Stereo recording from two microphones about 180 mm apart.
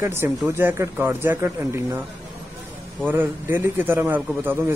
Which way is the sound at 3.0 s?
10° right (ahead or behind).